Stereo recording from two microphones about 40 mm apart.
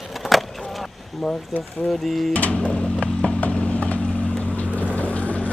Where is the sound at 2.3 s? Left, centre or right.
Left.